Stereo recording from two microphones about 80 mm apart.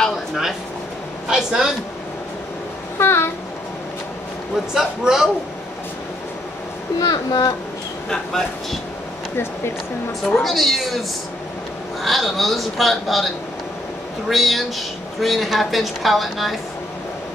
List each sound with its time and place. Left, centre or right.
1.3 s a man's voice: centre
3.0 s a sound: left
4.7 s a man's voice: centre
7.0 s a child's voice: left
8.1 s a woman's voice: centre
10.2 s a woman's voice: centre
12.0 s a woman's voice: centre
14.3 s a woman's voice: centre